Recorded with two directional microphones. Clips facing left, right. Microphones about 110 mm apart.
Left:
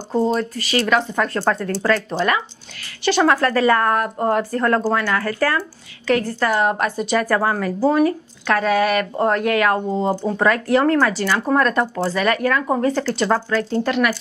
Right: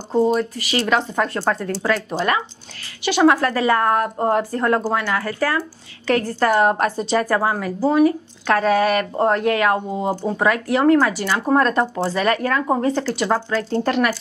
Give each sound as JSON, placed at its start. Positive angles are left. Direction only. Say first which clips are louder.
{"t": 0.1, "sound": "speech", "louder": "right 2 dB", "side_deg": -15}
{"t": 1.4, "sound": "a woman's voice", "louder": "left 1 dB", "side_deg": -10}
{"t": 2.1, "sound": "a woman's voice", "louder": "left 1 dB", "side_deg": -30}
{"t": 3.0, "sound": "a woman's voice", "louder": "right 1 dB", "side_deg": -10}
{"t": 6.0, "sound": "a woman's voice", "louder": "right 1 dB", "side_deg": -40}
{"t": 7.3, "sound": "a woman's voice", "louder": "left 1 dB", "side_deg": -15}
{"t": 7.8, "sound": "speech", "louder": "right 1 dB", "side_deg": -5}
{"t": 8.5, "sound": "a woman's voice", "louder": "right 1 dB", "side_deg": -35}
{"t": 9.9, "sound": "speech", "louder": "left 2 dB", "side_deg": -15}
{"t": 13.0, "sound": "a woman's voice", "louder": "left 1 dB", "side_deg": -10}
{"t": 13.7, "sound": "speech", "louder": "right 1 dB", "side_deg": -40}